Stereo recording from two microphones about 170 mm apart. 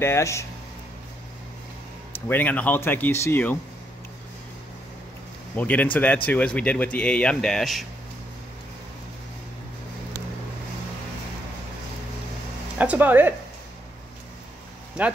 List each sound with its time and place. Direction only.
0.0 s speech: 15° left (ahead or behind)
2.2 s speech: 10° left (ahead or behind)
5.6 s speech: 10° left (ahead or behind)
12.7 s speech: 10° right (ahead or behind)
15.0 s speech: 5° right (ahead or behind)